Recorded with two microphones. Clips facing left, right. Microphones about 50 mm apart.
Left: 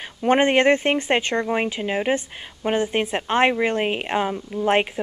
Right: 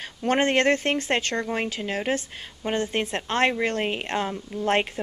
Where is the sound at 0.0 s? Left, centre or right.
Centre.